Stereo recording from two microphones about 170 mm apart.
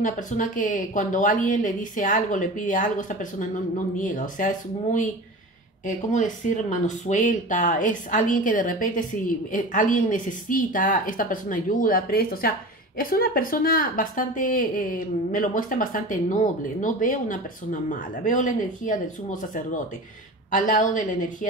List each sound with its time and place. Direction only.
0.0 s a woman's voice: 50° left (ahead or behind)
20.5 s a woman's voice: 50° left (ahead or behind)